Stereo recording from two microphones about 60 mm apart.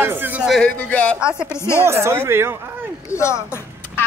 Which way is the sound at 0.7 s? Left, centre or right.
Left.